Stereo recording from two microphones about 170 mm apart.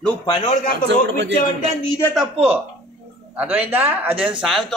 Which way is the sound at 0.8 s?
90° right.